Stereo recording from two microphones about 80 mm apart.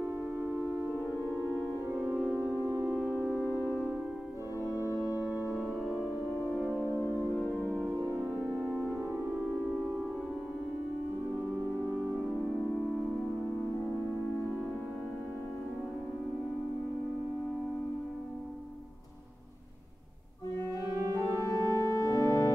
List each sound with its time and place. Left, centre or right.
2.6 s music: right
3.3 s music: left
5.2 s music: right
6.7 s music: left
7.6 s music: right
20.8 s music: right
21.2 s organ: left